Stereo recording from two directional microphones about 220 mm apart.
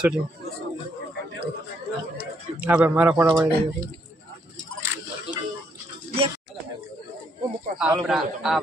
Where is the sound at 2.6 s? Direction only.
10° right (ahead or behind).